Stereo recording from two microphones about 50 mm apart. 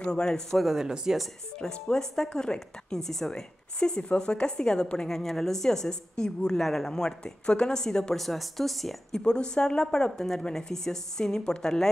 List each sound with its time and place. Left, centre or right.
0.0 s speech: centre
0.7 s speech: centre
1.6 s speech: centre
6.9 s speech: centre
8.2 s speech: centre
9.2 s speech: centre